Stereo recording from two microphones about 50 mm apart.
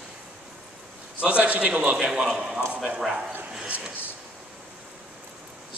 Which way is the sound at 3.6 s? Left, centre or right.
Centre.